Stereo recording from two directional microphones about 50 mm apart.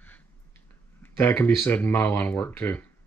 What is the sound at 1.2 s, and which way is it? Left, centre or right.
Speech, left.